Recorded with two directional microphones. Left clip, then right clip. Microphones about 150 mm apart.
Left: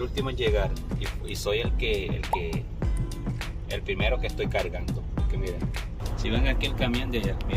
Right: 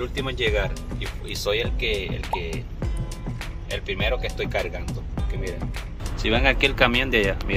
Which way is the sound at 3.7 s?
15° left (ahead or behind).